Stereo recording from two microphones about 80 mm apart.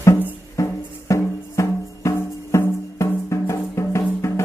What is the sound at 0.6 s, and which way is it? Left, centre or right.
Music, left.